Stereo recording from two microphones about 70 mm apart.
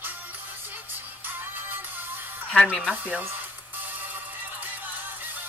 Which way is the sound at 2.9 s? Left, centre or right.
Right.